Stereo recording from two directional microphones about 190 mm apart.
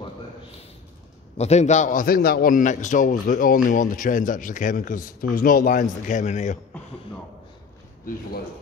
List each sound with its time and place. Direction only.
1.4 s a man's voice: 35° left (ahead or behind)